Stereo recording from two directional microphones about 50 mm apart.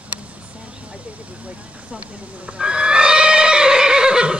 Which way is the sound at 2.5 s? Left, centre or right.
Centre.